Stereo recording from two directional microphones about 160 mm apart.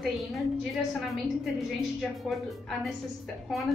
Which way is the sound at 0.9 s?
Centre (ahead or behind).